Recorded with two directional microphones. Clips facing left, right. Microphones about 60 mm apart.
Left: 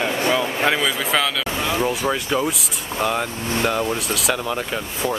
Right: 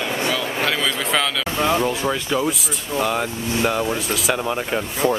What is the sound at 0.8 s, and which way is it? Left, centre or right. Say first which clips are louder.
Speech: left 1 dB; centre.